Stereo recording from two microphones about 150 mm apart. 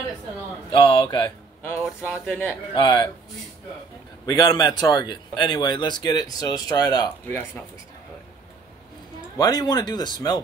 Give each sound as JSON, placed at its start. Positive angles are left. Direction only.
{"t": 0.7, "sound": "speech", "side_deg": 35}
{"t": 1.8, "sound": "speech", "side_deg": 0}
{"t": 2.2, "sound": "speech", "side_deg": 10}
{"t": 2.7, "sound": "speech", "side_deg": 30}
{"t": 4.3, "sound": "a man's voice", "side_deg": 25}
{"t": 7.2, "sound": "speech", "side_deg": 15}
{"t": 9.4, "sound": "a man's voice", "side_deg": 25}